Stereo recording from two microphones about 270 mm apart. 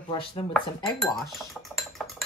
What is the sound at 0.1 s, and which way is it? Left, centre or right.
Dishes, centre.